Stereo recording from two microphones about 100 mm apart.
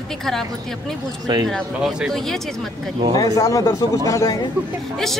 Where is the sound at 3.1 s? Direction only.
35° left (ahead or behind).